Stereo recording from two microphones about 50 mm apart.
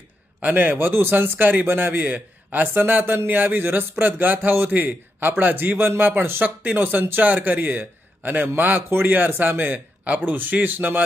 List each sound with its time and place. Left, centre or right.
0.4 s a man's voice: right
0.7 s a man's voice: right
3.9 s a man's voice: right
6.4 s a man's voice: right